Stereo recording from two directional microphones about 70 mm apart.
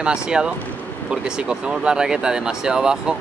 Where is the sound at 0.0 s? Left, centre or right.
Centre.